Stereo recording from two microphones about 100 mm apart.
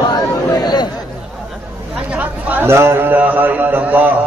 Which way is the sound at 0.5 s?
45° left (ahead or behind).